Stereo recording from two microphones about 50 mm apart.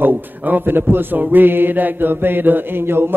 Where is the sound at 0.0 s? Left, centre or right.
Right.